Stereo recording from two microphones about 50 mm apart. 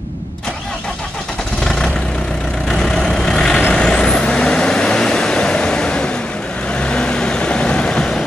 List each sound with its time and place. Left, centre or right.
1.6 s vehicle: centre